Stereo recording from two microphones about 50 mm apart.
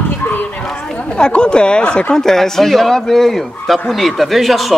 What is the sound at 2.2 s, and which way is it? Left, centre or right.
A man's voice, centre.